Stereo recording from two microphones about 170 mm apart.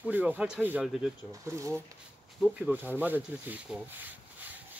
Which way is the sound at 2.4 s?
5° right (ahead or behind).